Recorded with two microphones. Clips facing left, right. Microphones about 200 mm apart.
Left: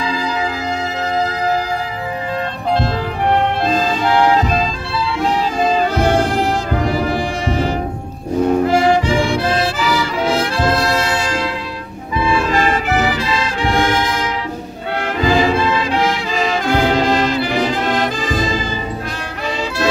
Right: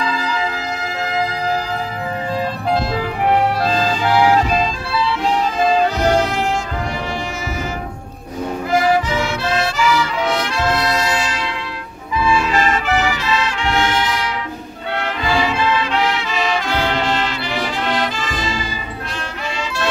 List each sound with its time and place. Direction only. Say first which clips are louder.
2.7 s music: left 2 dB; 5° right (ahead or behind)
8.6 s music: left 3 dB; 30° left (ahead or behind)
12.7 s music: left 2 dB; 35° left (ahead or behind)
13.7 s brass instrument: left 2 dB; 50° left (ahead or behind)
15.2 s music: left 5 dB; 45° left (ahead or behind)
16.6 s brass instrument: left 5 dB; 45° left (ahead or behind)